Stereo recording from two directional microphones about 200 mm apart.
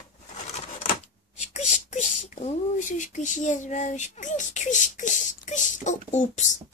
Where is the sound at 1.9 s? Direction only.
35° left (ahead or behind).